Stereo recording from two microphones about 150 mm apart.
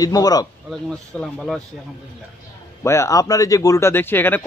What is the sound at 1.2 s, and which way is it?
Speech, 5° left (ahead or behind).